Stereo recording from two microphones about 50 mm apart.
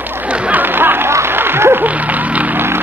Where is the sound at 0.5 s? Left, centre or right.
Right.